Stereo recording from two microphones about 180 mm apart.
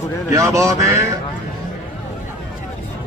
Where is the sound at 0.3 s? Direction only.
15° right (ahead or behind).